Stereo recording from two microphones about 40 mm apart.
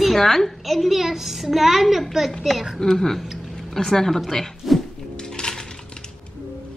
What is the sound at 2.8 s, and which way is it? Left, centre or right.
A woman's voice, centre.